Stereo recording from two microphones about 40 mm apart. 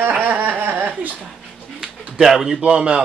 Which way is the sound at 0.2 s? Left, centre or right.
Right.